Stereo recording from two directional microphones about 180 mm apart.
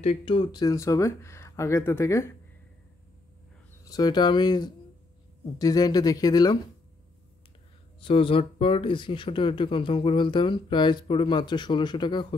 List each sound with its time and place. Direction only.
0.0 s speech: 35° left (ahead or behind); by 2.3 s 15° left (ahead or behind)
3.8 s speech: 20° left (ahead or behind)
8.0 s speech: 30° left (ahead or behind)